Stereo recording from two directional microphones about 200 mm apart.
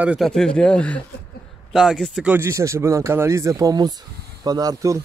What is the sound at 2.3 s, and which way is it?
Speech, 15° right (ahead or behind).